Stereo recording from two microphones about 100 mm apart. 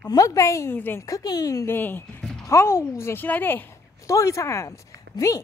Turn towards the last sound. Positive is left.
turn(degrees=35)  # may be behind; listen again after turning